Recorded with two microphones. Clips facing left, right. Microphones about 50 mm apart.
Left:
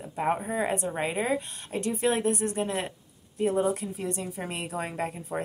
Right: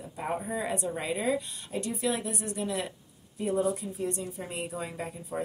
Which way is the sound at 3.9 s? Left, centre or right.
Left.